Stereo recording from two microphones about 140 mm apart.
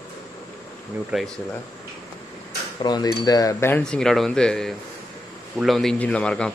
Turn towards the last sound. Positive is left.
turn(degrees=5)  # may be behind; listen again after turning